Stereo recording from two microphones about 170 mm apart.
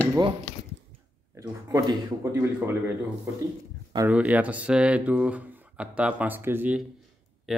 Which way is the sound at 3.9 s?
10° right (ahead or behind).